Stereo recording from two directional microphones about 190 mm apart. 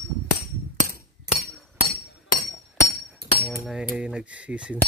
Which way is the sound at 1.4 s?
55° right (ahead or behind).